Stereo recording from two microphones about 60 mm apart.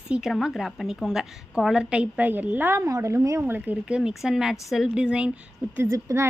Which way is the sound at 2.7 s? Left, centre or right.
Right.